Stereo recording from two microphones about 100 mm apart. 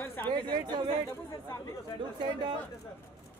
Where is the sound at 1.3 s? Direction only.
35° left (ahead or behind).